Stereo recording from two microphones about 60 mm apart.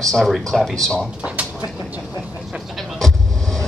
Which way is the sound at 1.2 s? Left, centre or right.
Centre.